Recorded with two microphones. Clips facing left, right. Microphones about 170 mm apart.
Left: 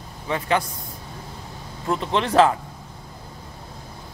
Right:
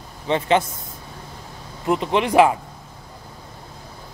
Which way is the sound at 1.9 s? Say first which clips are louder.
Right 3 dB; 15° right (ahead or behind).